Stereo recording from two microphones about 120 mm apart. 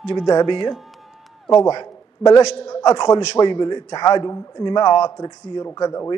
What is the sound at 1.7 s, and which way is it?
A man's voice, 35° left (ahead or behind).